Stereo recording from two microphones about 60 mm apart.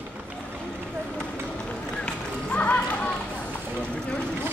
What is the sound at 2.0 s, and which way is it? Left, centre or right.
Run, left.